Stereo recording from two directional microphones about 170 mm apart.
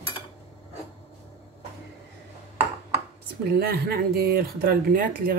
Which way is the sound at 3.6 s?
65° right (ahead or behind).